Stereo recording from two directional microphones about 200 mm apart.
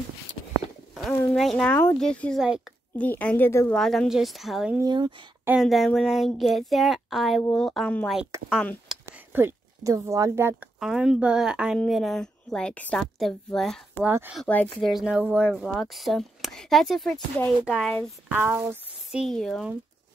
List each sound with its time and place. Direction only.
0.9 s speech: centre (ahead or behind)
4.7 s speech: 20° right (ahead or behind)
5.5 s speech: centre (ahead or behind)
8.8 s a sound: 10° right (ahead or behind)
10.8 s speech: centre (ahead or behind)
14.0 s speech: 10° right (ahead or behind)
14.4 s speech: 5° left (ahead or behind)
18.3 s speech: 10° right (ahead or behind)
19.2 s speech: centre (ahead or behind)